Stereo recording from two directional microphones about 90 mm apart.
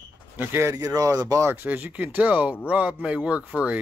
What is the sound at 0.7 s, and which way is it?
Speech, 40° right (ahead or behind).